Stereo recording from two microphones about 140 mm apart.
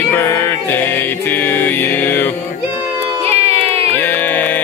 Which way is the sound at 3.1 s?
45° right (ahead or behind).